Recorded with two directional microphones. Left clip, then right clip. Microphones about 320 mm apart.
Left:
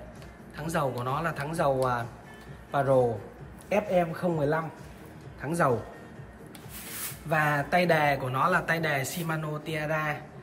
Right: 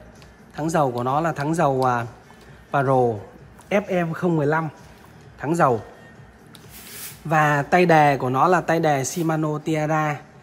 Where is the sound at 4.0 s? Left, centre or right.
Right.